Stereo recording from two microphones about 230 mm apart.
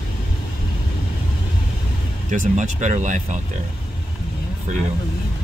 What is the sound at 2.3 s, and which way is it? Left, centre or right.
Speech, right.